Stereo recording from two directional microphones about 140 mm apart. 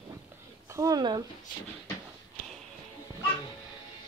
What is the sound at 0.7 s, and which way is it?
Speech, 25° right (ahead or behind).